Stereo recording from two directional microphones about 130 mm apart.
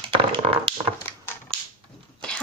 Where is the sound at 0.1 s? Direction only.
45° right (ahead or behind).